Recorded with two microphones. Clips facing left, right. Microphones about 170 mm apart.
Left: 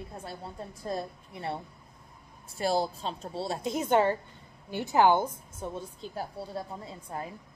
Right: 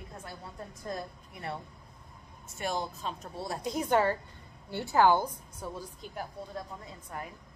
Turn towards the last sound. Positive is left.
turn(degrees=30)  # may be behind; listen again after turning